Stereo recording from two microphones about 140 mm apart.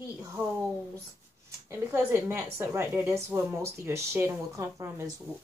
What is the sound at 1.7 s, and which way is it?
A woman's voice, 15° right (ahead or behind).